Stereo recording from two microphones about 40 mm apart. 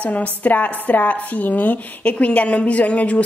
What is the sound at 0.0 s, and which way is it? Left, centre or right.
Speech, left.